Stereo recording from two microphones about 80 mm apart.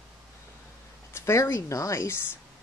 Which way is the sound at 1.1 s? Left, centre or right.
Left.